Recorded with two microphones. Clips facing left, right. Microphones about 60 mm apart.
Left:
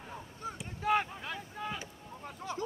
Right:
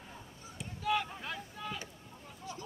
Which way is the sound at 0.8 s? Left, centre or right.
Left.